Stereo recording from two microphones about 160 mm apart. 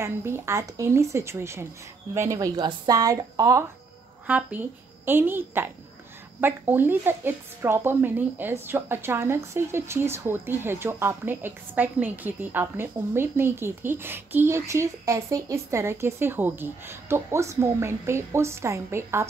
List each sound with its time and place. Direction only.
0.0 s speech: 15° right (ahead or behind)
4.3 s speech: 10° right (ahead or behind)